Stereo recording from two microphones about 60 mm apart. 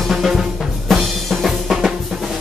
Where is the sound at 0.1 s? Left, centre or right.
Centre.